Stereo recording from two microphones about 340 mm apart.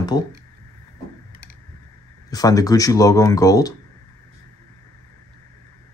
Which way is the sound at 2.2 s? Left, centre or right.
Centre.